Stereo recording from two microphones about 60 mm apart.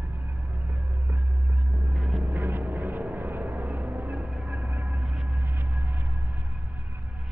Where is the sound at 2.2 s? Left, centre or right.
Right.